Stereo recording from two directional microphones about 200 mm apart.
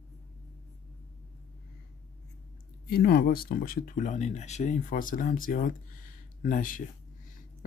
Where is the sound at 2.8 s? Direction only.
50° left (ahead or behind).